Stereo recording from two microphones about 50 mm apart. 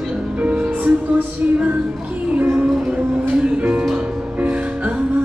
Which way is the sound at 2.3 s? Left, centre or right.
Right.